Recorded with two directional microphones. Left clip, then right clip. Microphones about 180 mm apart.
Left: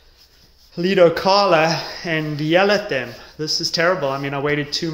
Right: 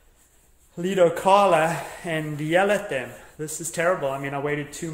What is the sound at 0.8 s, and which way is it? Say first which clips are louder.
A man's voice: left 6 dB; 25° left (ahead or behind).